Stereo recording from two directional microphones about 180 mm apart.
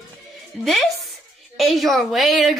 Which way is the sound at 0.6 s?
Centre (ahead or behind).